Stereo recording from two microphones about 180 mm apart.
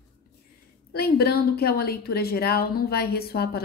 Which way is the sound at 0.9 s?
60° left (ahead or behind).